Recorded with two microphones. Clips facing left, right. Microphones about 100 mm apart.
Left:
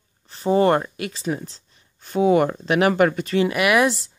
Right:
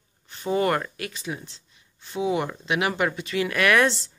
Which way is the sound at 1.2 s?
40° left (ahead or behind).